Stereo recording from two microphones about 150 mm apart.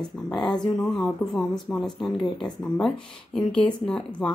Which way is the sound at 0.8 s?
5° left (ahead or behind).